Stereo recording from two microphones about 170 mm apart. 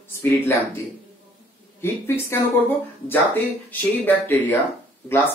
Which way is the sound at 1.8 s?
15° left (ahead or behind).